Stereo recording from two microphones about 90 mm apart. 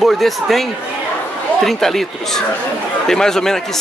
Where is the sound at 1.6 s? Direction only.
5° left (ahead or behind).